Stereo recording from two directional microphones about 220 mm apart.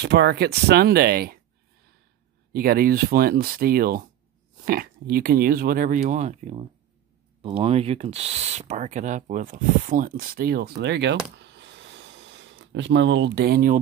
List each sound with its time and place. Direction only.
0.0 s speech: 50° right (ahead or behind)
2.5 s speech: 40° right (ahead or behind)